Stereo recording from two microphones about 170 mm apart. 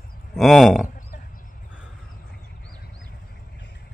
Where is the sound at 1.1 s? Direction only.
55° left (ahead or behind).